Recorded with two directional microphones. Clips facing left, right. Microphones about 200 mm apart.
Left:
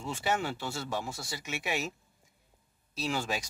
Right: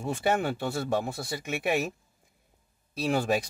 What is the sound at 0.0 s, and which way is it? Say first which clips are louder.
Speech: right 5 dB; 55° right (ahead or behind).